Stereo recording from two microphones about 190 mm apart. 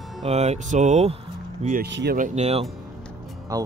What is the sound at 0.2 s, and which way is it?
Speech, 35° right (ahead or behind).